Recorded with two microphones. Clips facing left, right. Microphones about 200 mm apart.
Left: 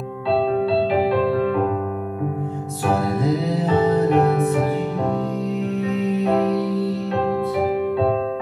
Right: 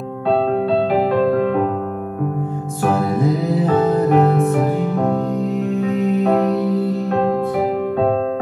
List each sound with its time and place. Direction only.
1.2 s music: 50° right (ahead or behind)
3.6 s music: 50° right (ahead or behind)